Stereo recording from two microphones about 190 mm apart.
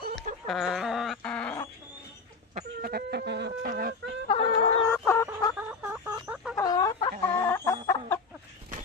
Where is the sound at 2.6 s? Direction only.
50° right (ahead or behind).